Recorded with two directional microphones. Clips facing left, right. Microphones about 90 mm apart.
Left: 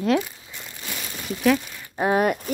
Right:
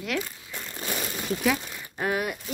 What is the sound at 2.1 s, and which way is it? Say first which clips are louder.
Speech: left 11 dB; 50° left (ahead or behind).